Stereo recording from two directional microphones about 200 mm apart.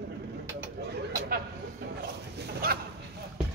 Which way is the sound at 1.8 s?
50° right (ahead or behind).